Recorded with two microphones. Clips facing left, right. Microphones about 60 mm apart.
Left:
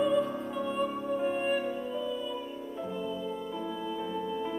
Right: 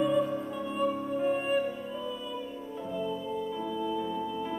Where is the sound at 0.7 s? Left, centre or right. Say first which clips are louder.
Right 2 dB; centre.